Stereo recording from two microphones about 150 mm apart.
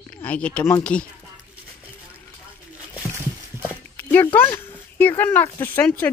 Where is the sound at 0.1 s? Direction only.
10° left (ahead or behind).